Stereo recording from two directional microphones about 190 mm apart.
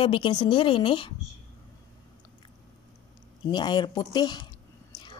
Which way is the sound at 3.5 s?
25° left (ahead or behind).